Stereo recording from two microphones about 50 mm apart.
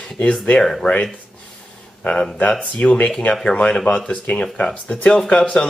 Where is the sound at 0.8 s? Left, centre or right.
Centre.